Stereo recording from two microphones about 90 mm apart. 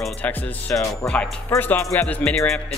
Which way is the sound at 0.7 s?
20° left (ahead or behind).